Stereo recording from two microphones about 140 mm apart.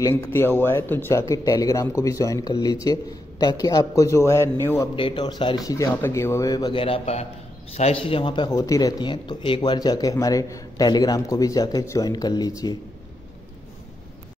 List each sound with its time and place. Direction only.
0.0 s speech: 20° left (ahead or behind)
4.9 s speech: 35° left (ahead or behind)
5.7 s speech: 20° left (ahead or behind)